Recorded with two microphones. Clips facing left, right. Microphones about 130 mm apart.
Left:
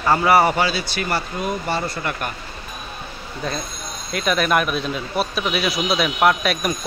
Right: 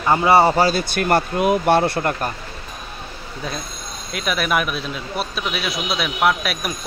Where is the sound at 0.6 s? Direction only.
45° right (ahead or behind); by 2.1 s 60° right (ahead or behind).